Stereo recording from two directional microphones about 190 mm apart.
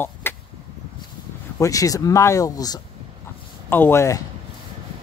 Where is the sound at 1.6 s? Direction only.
20° left (ahead or behind).